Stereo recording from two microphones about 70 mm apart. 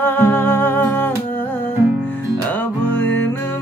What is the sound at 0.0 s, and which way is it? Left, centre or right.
Humming, left.